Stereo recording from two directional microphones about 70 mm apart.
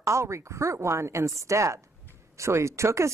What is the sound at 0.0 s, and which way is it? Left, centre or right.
Speech, right.